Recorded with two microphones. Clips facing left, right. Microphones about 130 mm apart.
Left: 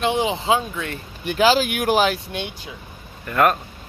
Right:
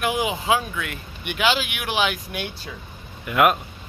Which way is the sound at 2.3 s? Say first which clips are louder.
Left 1 dB; 20° left (ahead or behind).